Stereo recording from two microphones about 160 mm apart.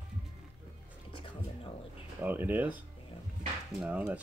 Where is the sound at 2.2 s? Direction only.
10° right (ahead or behind).